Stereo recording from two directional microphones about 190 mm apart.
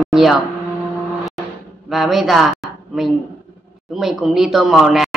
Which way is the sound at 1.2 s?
Centre (ahead or behind).